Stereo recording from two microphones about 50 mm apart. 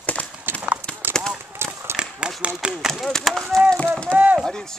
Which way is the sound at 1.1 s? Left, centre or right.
Centre.